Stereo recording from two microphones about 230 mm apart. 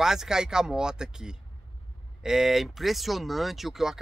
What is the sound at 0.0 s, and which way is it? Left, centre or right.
Speech, centre.